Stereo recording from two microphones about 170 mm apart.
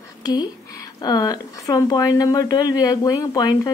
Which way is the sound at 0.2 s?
25° left (ahead or behind).